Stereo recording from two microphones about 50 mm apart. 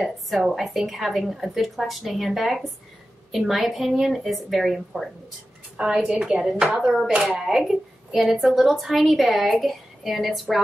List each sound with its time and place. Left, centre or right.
0.0 s a woman's voice: centre
7.2 s a woman's voice: centre